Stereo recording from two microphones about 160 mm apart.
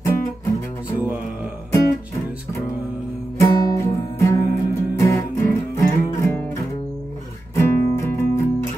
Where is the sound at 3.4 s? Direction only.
20° left (ahead or behind).